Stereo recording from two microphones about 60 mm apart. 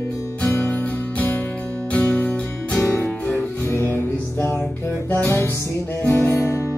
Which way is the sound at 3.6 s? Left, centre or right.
Left.